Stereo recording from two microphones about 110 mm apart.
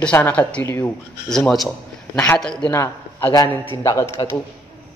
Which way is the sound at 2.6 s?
25° left (ahead or behind).